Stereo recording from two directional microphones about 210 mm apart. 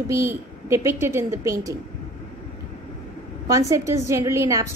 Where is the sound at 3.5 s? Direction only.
15° right (ahead or behind).